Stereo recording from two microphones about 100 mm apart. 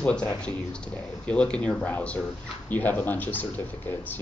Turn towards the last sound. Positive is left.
turn(degrees=20)  # may be behind; listen again after turning